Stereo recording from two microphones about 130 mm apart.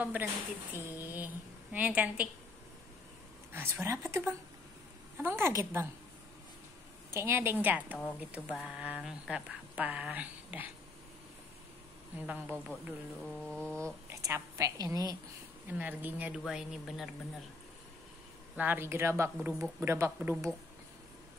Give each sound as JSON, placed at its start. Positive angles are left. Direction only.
{"t": 0.0, "sound": "speech", "side_deg": -15}
{"t": 3.5, "sound": "a woman's voice", "side_deg": -20}
{"t": 7.2, "sound": "speech", "side_deg": -20}
{"t": 12.3, "sound": "speech", "side_deg": -10}
{"t": 13.2, "sound": "mantra", "side_deg": 10}
{"t": 13.7, "sound": "a woman's voice", "side_deg": -20}
{"t": 15.8, "sound": "speech", "side_deg": -15}
{"t": 16.4, "sound": "speech", "side_deg": 0}
{"t": 18.6, "sound": "a woman's voice", "side_deg": -15}